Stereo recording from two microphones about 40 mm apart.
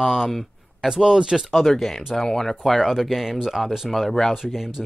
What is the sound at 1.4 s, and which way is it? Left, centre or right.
Speech, centre.